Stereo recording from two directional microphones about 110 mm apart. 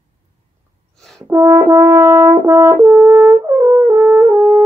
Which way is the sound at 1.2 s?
25° right (ahead or behind).